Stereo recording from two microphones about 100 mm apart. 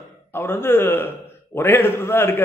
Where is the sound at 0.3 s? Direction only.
25° left (ahead or behind).